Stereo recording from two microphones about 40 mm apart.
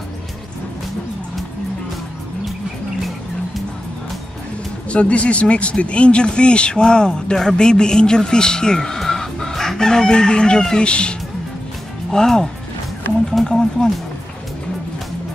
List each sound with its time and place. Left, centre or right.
4.8 s speech: left
12.1 s speech: centre
13.5 s speech: centre